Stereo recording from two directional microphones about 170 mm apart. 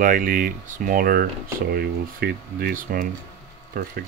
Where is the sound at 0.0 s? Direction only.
55° right (ahead or behind).